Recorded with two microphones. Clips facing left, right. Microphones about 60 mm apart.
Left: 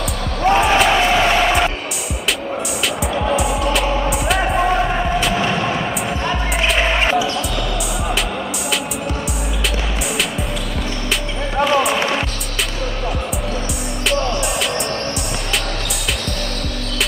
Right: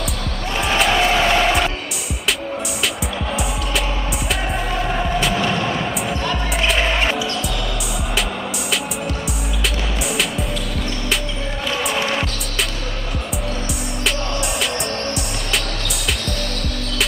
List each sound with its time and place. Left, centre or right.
0.7 s music: centre
3.3 s music: centre
4.6 s music: centre
5.3 s a sound: centre
6.8 s basketball bounce: centre